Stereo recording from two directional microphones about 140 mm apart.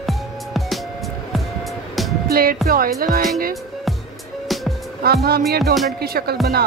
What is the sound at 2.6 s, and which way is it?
Music, 90° right.